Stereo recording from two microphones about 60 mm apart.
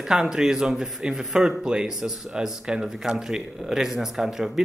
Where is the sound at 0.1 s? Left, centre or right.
Centre.